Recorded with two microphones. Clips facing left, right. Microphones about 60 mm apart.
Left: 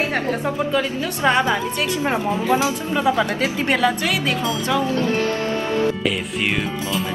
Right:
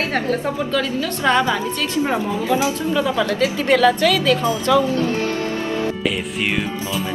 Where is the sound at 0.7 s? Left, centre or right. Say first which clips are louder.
Right 1 dB; left.